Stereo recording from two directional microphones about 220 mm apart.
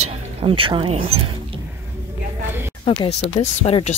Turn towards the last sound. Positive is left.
turn(degrees=30)  # may be behind; listen again after turning